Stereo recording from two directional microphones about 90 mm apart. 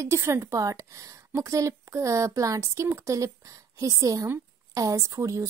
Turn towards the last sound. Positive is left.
turn(degrees=-40)  # may be behind; listen again after turning